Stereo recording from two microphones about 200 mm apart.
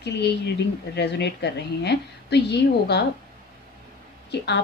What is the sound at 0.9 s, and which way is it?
A woman's voice, 55° left (ahead or behind).